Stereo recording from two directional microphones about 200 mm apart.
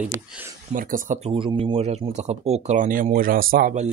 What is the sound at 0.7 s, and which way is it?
Speech, 40° right (ahead or behind).